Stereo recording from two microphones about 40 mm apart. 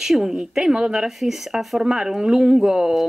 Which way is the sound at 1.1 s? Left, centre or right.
Centre.